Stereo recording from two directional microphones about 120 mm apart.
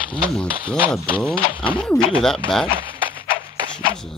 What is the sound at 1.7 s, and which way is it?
Speech, 10° left (ahead or behind).